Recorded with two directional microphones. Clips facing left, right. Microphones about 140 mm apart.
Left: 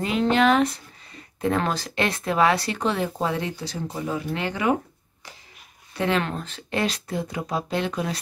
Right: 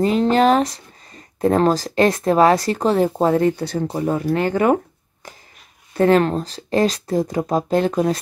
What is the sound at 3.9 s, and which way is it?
Speech, 40° right (ahead or behind).